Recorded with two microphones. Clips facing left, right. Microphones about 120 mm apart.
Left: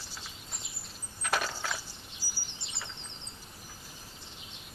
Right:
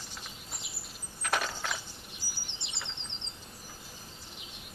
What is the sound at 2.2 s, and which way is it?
Bird vocalization, 5° left (ahead or behind).